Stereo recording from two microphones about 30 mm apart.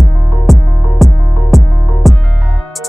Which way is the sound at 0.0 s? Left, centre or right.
Centre.